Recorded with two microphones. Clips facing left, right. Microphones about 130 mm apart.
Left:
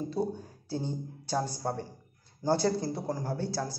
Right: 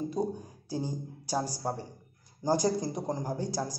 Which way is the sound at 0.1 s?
15° right (ahead or behind).